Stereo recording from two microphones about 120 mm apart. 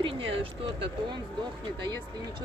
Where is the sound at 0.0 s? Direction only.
50° right (ahead or behind).